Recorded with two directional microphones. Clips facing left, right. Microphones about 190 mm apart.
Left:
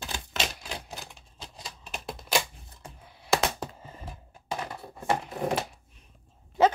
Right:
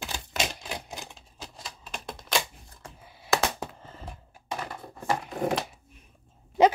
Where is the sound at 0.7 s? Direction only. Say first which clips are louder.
Right 2 dB; 15° right (ahead or behind).